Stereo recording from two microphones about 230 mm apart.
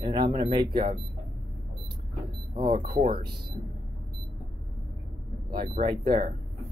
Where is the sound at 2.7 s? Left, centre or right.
Right.